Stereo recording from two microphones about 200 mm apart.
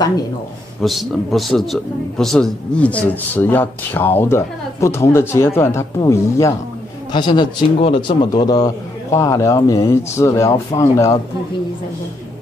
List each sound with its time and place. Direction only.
0.7 s speech: centre (ahead or behind)